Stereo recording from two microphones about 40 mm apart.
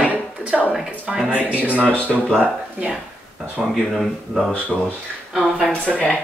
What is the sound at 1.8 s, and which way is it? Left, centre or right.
Speech, left.